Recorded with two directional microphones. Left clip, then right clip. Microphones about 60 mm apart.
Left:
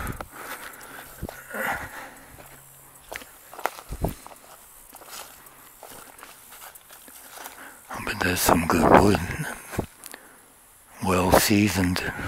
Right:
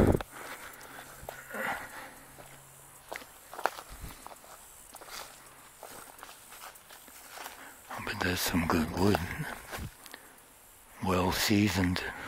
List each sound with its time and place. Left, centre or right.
0.0 s a sound: centre
0.5 s walk: left
0.8 s a sound: left
5.0 s walk: centre
7.5 s dog: centre
8.6 s speech: centre
11.0 s speech: left